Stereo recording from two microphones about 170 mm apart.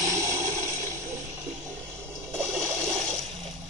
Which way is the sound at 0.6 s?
15° right (ahead or behind).